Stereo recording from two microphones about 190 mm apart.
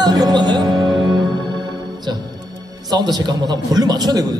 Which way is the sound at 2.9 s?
20° right (ahead or behind).